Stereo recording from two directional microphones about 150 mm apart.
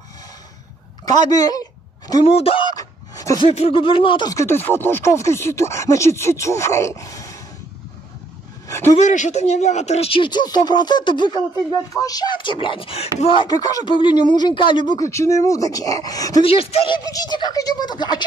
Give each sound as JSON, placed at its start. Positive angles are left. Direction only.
{"t": 1.3, "sound": "a sound", "side_deg": 25}
{"t": 2.2, "sound": "speech", "side_deg": 40}
{"t": 2.7, "sound": "a sound", "side_deg": 25}
{"t": 3.4, "sound": "speech", "side_deg": 40}
{"t": 4.3, "sound": "speech", "side_deg": 20}
{"t": 8.6, "sound": "a sound", "side_deg": 20}
{"t": 8.9, "sound": "speech", "side_deg": 55}
{"t": 15.0, "sound": "speech", "side_deg": 20}
{"t": 16.4, "sound": "speech", "side_deg": 40}